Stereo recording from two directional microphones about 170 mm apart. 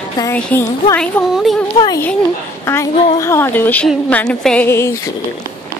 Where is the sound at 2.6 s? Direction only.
15° left (ahead or behind).